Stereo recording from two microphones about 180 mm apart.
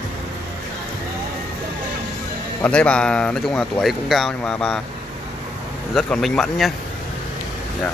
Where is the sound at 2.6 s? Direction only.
5° left (ahead or behind).